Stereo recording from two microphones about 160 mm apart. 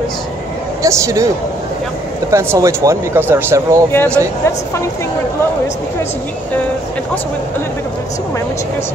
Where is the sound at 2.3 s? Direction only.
20° right (ahead or behind).